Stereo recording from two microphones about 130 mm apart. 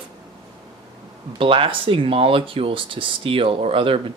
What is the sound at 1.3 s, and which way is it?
Speech, 40° right (ahead or behind).